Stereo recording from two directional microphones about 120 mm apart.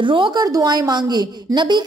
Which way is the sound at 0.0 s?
40° right (ahead or behind).